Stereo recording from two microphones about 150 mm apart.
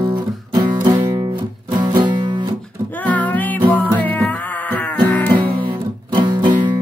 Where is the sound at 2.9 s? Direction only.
10° left (ahead or behind).